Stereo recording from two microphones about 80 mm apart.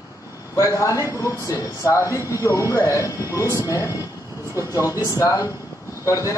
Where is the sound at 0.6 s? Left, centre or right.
Left.